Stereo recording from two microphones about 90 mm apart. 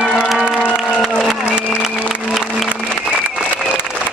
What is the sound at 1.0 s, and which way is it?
Applause, 5° right (ahead or behind).